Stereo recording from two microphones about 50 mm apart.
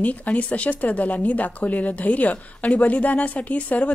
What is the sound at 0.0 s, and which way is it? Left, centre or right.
A woman's voice, left.